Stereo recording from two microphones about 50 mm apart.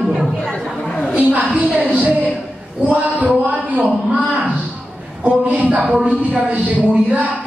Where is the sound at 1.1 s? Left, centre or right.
Right.